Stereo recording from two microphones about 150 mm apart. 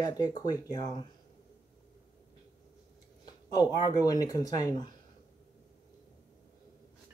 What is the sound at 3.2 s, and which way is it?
Speech, 25° left (ahead or behind).